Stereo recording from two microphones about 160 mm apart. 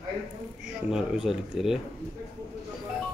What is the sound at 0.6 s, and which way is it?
Speech, 5° right (ahead or behind).